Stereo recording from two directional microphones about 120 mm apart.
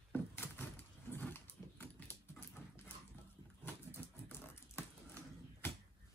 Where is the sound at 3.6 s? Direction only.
20° left (ahead or behind).